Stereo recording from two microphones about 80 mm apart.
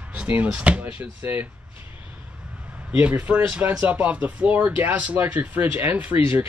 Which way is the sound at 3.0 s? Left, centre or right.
Centre.